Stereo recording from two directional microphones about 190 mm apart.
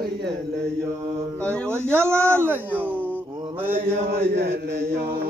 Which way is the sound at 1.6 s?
10° right (ahead or behind).